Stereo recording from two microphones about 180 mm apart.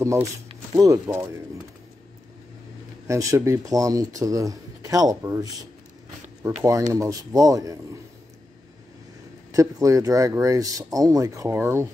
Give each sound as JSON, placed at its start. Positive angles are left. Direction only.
{"t": 0.0, "sound": "speech", "side_deg": -15}
{"t": 3.1, "sound": "speech", "side_deg": -15}
{"t": 9.5, "sound": "speech", "side_deg": -20}